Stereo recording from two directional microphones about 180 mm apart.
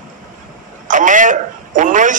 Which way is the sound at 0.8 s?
45° right (ahead or behind).